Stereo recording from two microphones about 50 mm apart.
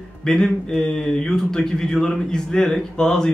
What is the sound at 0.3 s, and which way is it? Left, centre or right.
Speech, centre.